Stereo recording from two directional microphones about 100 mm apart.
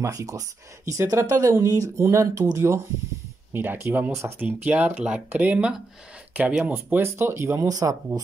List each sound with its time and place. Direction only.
0.0 s speech: 35° right (ahead or behind)